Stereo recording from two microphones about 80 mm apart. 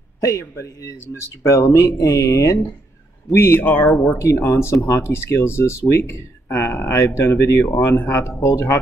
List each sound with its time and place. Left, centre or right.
0.2 s speech: left
3.3 s speech: left
4.1 s speech: left